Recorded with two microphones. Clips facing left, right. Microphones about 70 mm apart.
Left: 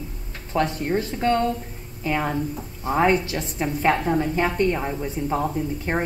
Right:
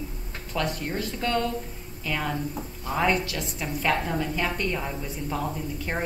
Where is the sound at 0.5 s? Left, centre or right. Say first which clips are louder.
Left 6 dB; left.